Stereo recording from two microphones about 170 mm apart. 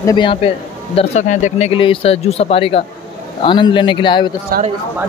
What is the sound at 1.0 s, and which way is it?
A man's voice, 45° left (ahead or behind).